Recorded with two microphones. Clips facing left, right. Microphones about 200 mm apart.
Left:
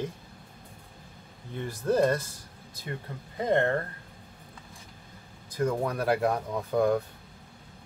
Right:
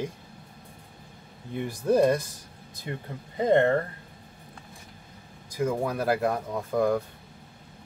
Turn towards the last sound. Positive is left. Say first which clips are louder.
# even
turn(degrees=0)  # may be behind; listen again after turning